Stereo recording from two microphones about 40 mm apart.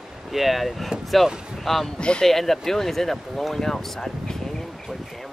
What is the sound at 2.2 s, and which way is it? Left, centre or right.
Speech, centre.